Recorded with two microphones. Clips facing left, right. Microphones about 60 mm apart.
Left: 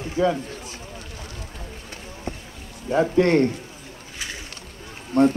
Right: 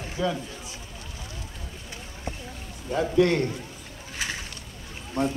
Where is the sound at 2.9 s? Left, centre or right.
Left.